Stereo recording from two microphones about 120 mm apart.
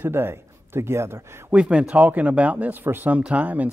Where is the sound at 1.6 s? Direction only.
10° right (ahead or behind).